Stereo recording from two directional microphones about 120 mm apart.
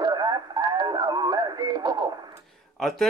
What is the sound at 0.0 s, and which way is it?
Radio, 35° right (ahead or behind).